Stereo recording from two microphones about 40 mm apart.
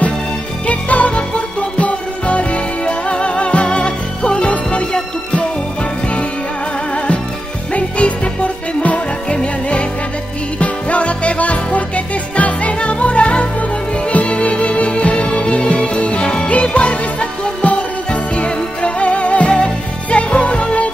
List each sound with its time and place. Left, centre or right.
0.7 s music: left
7.7 s music: left